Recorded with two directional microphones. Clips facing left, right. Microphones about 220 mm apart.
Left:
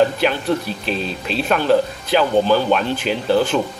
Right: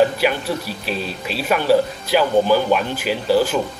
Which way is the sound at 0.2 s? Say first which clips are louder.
Left 2 dB; 10° right (ahead or behind).